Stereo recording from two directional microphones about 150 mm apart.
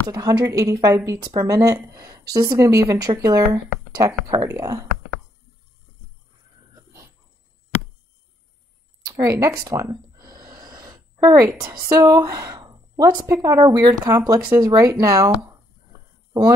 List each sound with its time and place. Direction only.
0.1 s speech: 25° right (ahead or behind)
9.0 s speech: 20° right (ahead or behind)
10.2 s a sound: 25° right (ahead or behind)
11.2 s speech: 20° right (ahead or behind)